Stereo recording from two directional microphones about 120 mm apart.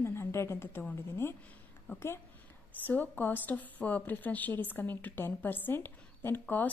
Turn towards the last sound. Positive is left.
turn(degrees=15)  # may be behind; listen again after turning